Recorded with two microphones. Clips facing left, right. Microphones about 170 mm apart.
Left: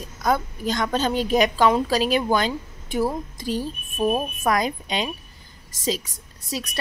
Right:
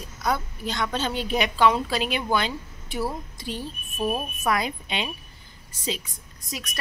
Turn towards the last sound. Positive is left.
turn(degrees=35)  # may be behind; listen again after turning